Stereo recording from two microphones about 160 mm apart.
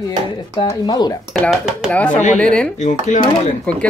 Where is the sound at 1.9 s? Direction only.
10° left (ahead or behind).